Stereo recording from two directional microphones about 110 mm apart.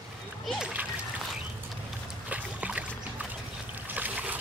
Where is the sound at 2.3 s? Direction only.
10° right (ahead or behind).